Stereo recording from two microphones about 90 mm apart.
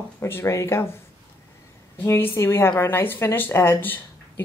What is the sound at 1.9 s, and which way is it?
A woman's voice, 25° left (ahead or behind).